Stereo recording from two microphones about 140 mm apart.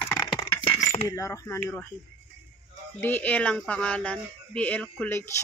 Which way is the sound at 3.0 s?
15° left (ahead or behind).